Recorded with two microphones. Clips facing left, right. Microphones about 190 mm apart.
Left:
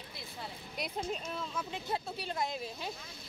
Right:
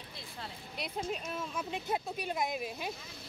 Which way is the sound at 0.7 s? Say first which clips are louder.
Even; 5° right (ahead or behind).